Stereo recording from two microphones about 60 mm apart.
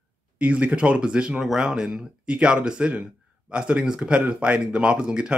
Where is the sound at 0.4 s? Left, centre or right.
Right.